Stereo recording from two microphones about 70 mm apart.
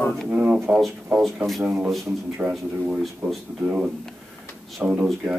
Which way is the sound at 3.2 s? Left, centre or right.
Right.